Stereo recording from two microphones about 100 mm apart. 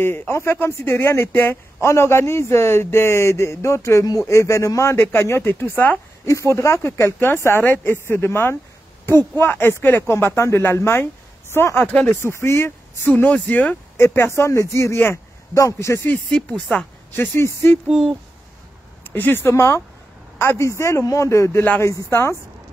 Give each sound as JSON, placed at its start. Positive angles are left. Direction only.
{"t": 0.0, "sound": "speech", "side_deg": 20}
{"t": 11.8, "sound": "speech", "side_deg": 10}
{"t": 12.2, "sound": "speech", "side_deg": 30}
{"t": 13.9, "sound": "speech", "side_deg": 25}
{"t": 16.1, "sound": "speech", "side_deg": 10}
{"t": 17.1, "sound": "speech", "side_deg": 25}
{"t": 19.1, "sound": "speech", "side_deg": 20}